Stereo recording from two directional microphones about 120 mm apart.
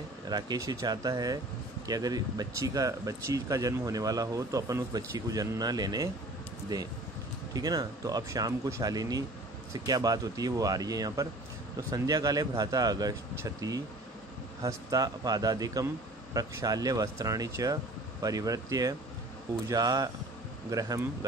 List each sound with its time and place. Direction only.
0.3 s speech: 35° right (ahead or behind)